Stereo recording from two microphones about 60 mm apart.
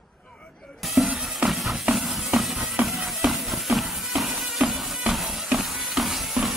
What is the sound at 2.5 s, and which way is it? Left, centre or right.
Music, centre.